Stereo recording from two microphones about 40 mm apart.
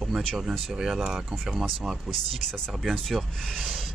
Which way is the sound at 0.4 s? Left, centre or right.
Centre.